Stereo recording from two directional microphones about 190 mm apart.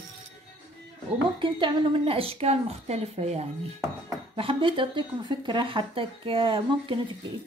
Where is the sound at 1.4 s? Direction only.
25° right (ahead or behind).